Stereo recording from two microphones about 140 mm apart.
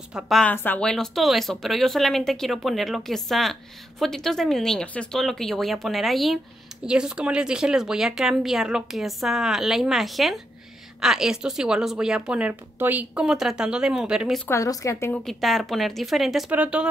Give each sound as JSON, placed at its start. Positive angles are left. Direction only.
{"t": 0.1, "sound": "speech", "side_deg": 0}
{"t": 14.5, "sound": "a woman's voice", "side_deg": 25}
{"t": 15.2, "sound": "speech", "side_deg": 0}